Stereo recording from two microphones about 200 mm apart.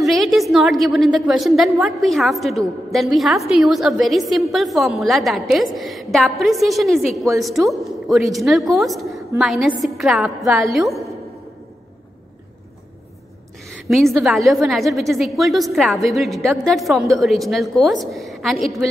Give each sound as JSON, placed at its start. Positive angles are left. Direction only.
{"t": 0.0, "sound": "a woman's voice", "side_deg": 0}
{"t": 13.8, "sound": "a woman's voice", "side_deg": 0}